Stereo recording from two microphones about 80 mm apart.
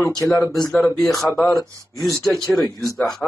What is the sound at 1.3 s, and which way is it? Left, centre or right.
Speech, left.